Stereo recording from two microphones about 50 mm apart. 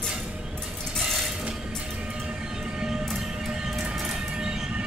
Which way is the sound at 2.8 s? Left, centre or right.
Centre.